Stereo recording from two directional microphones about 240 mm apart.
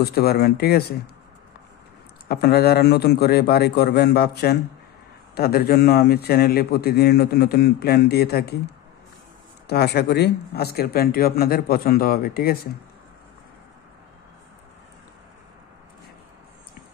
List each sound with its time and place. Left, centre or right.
0.0 s a man's voice: left
2.2 s a man's voice: left
9.7 s a man's voice: left